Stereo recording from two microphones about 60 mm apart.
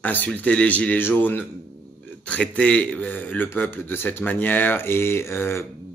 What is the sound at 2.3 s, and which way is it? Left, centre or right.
Speech, centre.